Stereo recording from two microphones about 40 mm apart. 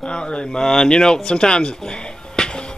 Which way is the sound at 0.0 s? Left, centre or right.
Left.